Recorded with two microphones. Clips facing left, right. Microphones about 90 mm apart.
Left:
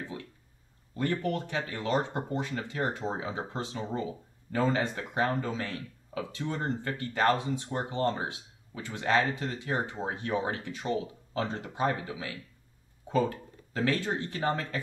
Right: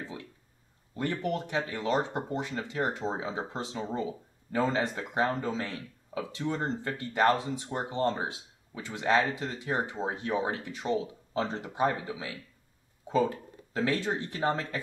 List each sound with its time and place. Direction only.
0.9 s speech: 15° right (ahead or behind)